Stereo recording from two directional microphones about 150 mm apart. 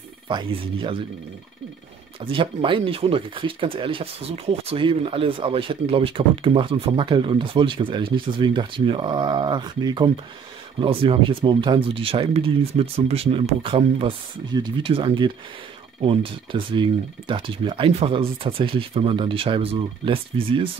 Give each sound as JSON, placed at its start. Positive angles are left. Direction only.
{"t": 0.3, "sound": "speech", "side_deg": -35}
{"t": 2.1, "sound": "speech", "side_deg": -35}